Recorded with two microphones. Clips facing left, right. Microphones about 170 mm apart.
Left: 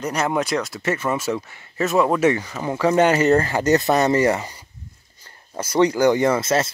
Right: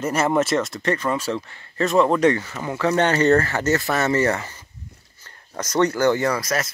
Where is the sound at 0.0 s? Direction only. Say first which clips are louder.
Right 2 dB; 5° right (ahead or behind).